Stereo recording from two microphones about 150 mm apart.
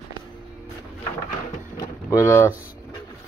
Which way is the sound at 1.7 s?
20° left (ahead or behind).